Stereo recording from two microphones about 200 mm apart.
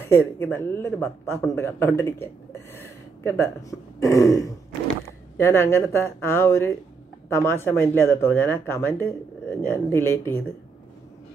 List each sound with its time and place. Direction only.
0.0 s speech: 10° left (ahead or behind)